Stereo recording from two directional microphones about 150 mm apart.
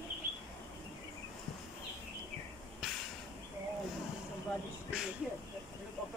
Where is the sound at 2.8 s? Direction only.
5° right (ahead or behind).